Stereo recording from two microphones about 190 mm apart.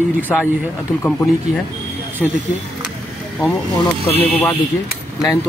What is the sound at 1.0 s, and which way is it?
Speech, 5° left (ahead or behind).